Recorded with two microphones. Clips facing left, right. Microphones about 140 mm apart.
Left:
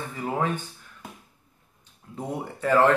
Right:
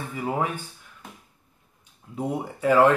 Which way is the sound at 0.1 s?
10° right (ahead or behind).